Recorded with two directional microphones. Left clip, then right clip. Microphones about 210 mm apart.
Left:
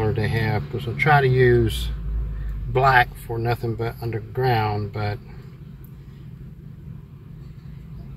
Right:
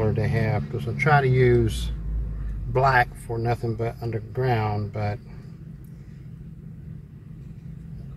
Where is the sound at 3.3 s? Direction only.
5° left (ahead or behind).